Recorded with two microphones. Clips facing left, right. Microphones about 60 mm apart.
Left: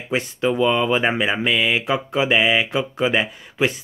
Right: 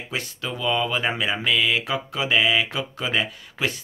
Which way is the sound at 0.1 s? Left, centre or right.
Left.